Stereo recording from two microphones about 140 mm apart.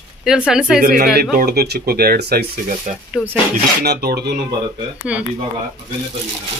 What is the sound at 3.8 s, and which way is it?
Speech, 90° right.